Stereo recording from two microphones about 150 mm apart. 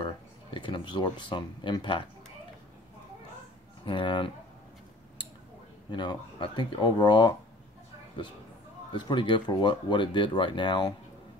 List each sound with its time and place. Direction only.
0.0 s speech: 35° left (ahead or behind)
3.8 s speech: 30° left (ahead or behind)
5.9 s speech: 30° left (ahead or behind)